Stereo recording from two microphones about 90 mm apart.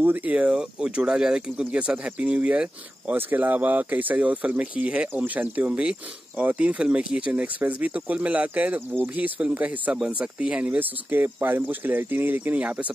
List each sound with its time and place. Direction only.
0.0 s speech: 20° right (ahead or behind)